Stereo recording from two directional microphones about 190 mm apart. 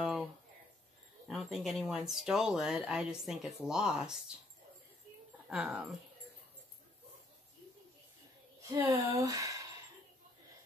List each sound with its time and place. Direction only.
0.0 s a sound: centre (ahead or behind)
1.2 s speech: centre (ahead or behind)
5.5 s speech: 5° right (ahead or behind)
8.7 s speech: 15° right (ahead or behind)